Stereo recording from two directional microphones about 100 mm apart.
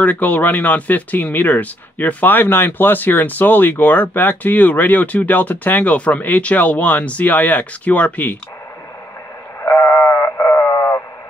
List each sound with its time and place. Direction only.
0.0 s speech: 15° left (ahead or behind)
9.6 s sheep: 25° left (ahead or behind)